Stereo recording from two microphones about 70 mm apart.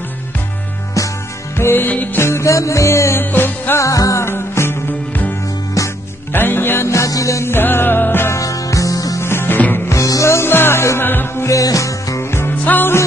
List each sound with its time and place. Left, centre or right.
1.6 s music: left
2.2 s music: left
3.3 s music: left
3.8 s music: left
5.8 s music: left
6.3 s music: left
6.9 s music: left
7.5 s music: left
8.4 s music: left
9.2 s music: left
9.8 s music: left
11.4 s music: left
12.2 s music: left
12.6 s music: left